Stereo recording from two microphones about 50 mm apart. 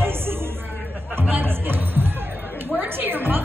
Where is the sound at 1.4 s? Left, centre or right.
Right.